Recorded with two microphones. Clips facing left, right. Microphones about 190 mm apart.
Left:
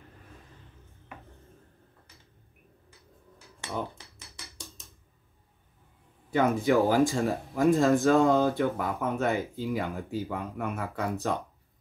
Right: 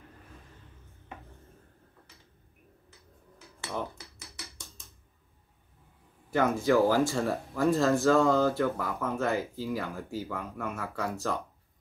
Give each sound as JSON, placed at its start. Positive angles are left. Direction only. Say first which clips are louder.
{"t": 6.3, "sound": "speech", "louder": "left 1 dB", "side_deg": 20}